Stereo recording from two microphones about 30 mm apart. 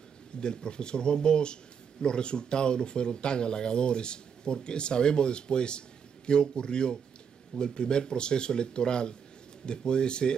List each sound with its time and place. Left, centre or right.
0.4 s speech: left